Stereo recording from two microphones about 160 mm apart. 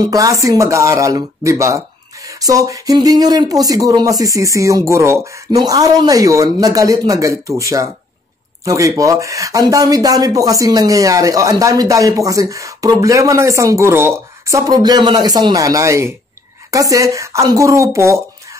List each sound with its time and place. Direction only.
0.0 s speech: 20° right (ahead or behind)